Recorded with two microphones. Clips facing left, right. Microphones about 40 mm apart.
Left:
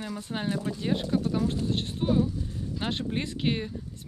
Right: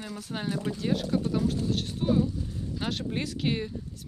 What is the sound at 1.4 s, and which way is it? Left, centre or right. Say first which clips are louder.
Speech: even; left.